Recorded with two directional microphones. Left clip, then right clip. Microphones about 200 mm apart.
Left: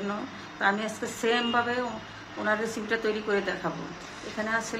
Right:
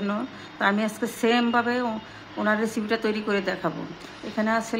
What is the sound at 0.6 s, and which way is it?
A woman's voice, 40° right (ahead or behind).